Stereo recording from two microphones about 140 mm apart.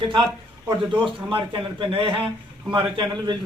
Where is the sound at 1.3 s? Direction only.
35° right (ahead or behind).